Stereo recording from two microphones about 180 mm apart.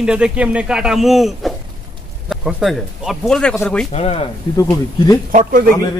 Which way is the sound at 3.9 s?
30° left (ahead or behind).